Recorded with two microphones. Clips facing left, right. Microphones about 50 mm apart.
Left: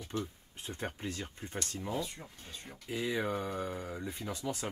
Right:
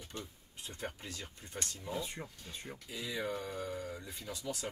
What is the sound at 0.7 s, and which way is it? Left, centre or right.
Speech, left.